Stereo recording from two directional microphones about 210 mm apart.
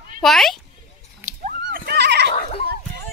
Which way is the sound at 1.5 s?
45° right (ahead or behind).